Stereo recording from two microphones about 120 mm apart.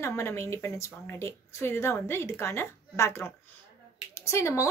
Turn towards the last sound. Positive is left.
turn(degrees=25)  # may be behind; listen again after turning